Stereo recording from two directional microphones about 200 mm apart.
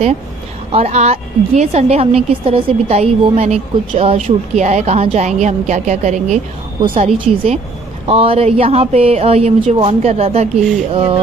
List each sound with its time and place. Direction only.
0.7 s a woman's voice: 30° right (ahead or behind)